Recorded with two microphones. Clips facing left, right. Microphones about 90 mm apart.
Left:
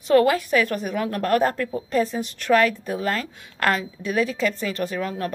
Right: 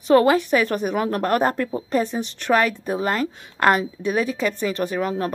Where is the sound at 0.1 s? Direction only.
25° right (ahead or behind).